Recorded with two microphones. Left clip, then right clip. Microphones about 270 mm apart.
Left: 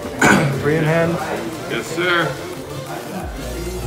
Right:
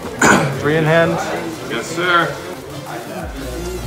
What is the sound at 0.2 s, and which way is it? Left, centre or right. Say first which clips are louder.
Dog: right 2 dB; centre.